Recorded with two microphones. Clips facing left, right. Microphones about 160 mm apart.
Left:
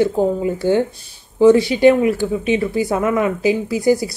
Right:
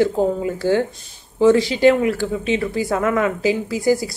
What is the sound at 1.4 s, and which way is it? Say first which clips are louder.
Speech: left 3 dB; 15° left (ahead or behind).